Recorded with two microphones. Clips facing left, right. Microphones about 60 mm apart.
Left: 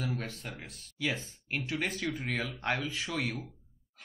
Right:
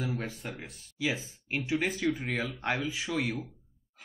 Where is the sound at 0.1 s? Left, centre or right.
Centre.